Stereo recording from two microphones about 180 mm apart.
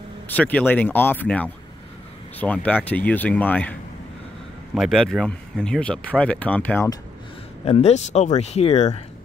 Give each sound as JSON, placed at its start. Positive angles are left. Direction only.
{"t": 0.3, "sound": "speech", "side_deg": 10}
{"t": 4.7, "sound": "speech", "side_deg": 0}
{"t": 7.6, "sound": "speech", "side_deg": 35}